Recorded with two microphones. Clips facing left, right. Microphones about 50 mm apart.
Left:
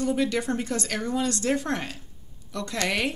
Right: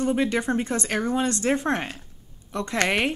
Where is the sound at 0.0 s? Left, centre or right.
Right.